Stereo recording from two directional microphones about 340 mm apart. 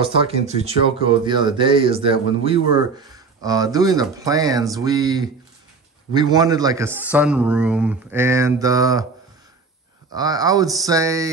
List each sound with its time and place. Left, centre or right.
0.0 s a man's voice: centre
10.1 s a man's voice: centre